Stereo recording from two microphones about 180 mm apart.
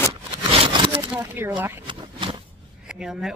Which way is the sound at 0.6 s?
25° right (ahead or behind).